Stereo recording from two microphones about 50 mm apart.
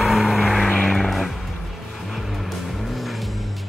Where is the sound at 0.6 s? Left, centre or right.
Left.